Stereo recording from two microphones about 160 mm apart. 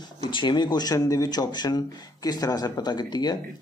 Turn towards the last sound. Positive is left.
turn(degrees=25)  # may be behind; listen again after turning